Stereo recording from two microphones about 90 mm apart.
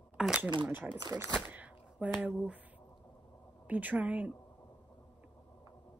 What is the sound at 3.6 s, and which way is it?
Speech, 15° right (ahead or behind).